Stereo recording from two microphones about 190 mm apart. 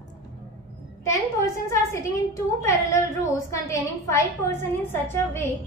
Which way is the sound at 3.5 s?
15° left (ahead or behind).